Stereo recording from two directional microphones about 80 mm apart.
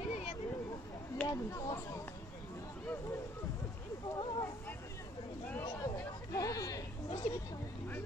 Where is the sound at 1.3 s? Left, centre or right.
Left.